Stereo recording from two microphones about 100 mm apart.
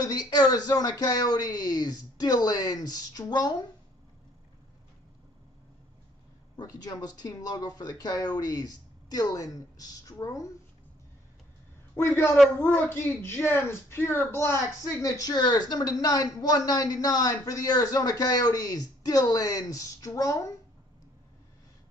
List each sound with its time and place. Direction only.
0.0 s speech: 40° left (ahead or behind)
6.5 s speech: 40° left (ahead or behind)
11.9 s a woman's voice: 25° left (ahead or behind)